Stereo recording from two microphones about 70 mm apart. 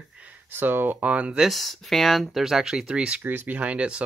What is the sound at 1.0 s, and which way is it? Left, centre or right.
Speech, centre.